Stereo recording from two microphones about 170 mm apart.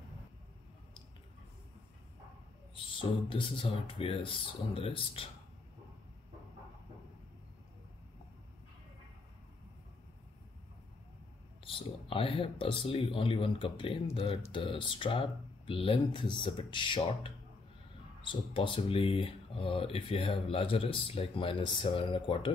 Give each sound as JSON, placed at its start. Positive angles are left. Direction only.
{"t": 2.7, "sound": "speech", "side_deg": 30}
{"t": 11.6, "sound": "speech", "side_deg": 30}